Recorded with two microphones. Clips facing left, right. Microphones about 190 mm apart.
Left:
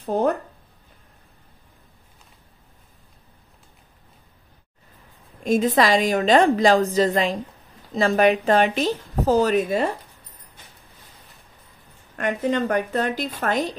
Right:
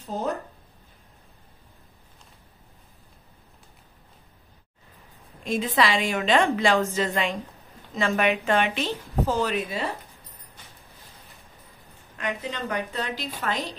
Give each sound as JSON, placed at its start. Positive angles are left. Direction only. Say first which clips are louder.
{"t": 0.0, "sound": "speech", "louder": "left 8 dB", "side_deg": 60}
{"t": 5.4, "sound": "a woman's voice", "louder": "left 5 dB", "side_deg": 45}
{"t": 12.2, "sound": "a woman's voice", "louder": "left 9 dB", "side_deg": 50}